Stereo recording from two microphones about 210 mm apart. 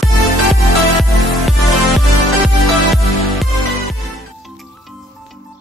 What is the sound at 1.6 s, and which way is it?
Music, centre (ahead or behind).